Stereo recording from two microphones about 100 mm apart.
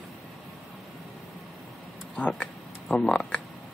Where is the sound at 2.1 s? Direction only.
15° left (ahead or behind).